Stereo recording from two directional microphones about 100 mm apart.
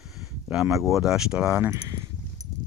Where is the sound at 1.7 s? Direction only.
30° right (ahead or behind).